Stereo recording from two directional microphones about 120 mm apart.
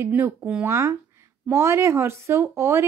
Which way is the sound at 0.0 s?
15° right (ahead or behind).